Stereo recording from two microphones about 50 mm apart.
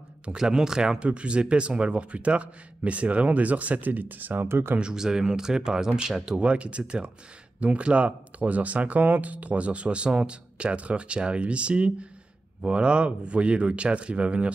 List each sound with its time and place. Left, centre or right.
0.2 s speech: centre; by 4.5 s right
4.5 s speech: right
4.7 s speech: centre
6.4 s speech: right